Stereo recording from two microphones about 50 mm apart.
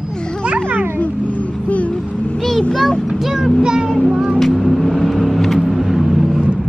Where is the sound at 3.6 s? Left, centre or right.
Centre.